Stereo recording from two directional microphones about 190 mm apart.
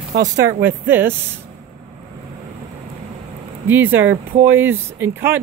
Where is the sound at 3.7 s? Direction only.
10° right (ahead or behind).